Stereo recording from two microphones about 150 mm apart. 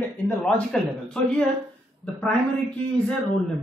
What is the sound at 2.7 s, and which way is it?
Speech, 5° left (ahead or behind).